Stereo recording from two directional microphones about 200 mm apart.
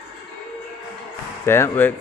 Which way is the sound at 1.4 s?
10° left (ahead or behind).